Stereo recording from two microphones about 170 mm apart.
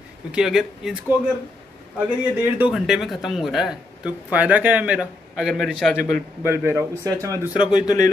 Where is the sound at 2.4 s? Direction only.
10° right (ahead or behind).